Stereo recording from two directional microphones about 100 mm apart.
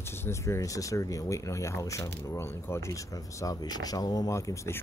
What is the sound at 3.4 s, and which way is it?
Speech, 40° left (ahead or behind).